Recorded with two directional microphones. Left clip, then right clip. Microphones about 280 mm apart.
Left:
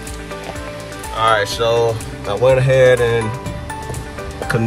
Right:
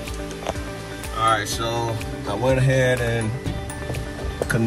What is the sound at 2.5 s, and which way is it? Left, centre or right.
Speech, centre.